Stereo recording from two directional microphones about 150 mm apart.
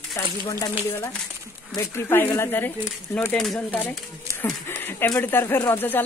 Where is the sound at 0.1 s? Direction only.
25° left (ahead or behind).